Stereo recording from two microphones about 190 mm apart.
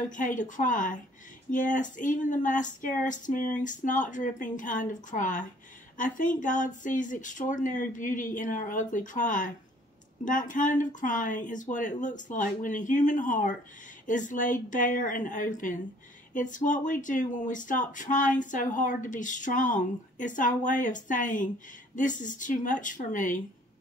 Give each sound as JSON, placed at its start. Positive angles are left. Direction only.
{"t": 0.1, "sound": "speech", "side_deg": 40}